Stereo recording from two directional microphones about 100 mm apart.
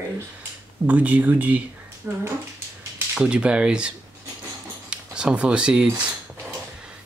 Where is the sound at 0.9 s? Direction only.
15° right (ahead or behind).